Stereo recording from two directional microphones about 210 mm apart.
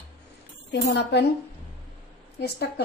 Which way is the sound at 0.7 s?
55° left (ahead or behind).